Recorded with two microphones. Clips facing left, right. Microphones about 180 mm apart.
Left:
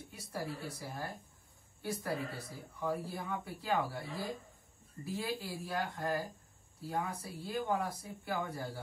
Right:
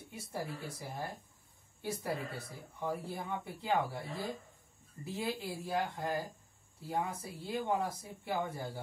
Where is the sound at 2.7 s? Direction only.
25° right (ahead or behind).